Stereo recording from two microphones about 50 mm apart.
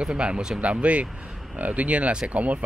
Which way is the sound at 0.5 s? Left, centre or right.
Right.